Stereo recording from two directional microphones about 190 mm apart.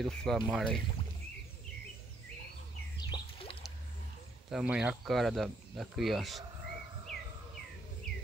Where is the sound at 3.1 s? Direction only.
30° left (ahead or behind).